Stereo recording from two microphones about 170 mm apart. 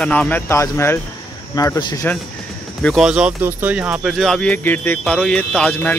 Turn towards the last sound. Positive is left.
turn(degrees=5)  # may be behind; listen again after turning